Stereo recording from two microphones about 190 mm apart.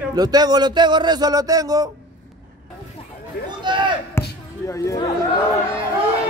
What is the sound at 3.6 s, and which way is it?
Speech, 25° right (ahead or behind).